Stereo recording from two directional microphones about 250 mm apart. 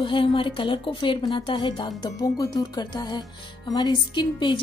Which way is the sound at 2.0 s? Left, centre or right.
Centre.